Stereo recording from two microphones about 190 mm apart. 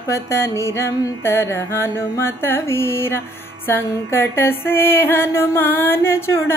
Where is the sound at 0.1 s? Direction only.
15° left (ahead or behind).